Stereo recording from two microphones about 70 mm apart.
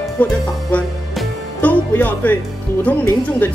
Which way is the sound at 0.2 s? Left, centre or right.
Left.